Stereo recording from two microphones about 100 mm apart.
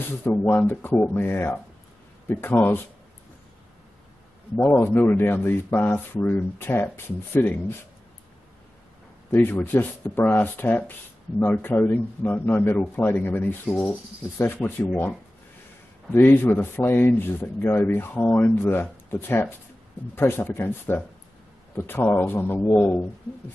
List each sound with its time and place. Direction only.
0.2 s a man's voice: 20° left (ahead or behind)
4.6 s a man's voice: 20° left (ahead or behind)
9.3 s a man's voice: 20° left (ahead or behind)